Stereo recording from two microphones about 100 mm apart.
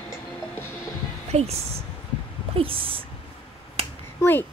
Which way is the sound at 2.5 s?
65° right (ahead or behind).